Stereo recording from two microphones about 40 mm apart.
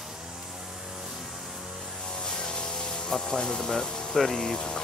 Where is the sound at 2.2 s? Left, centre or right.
Centre.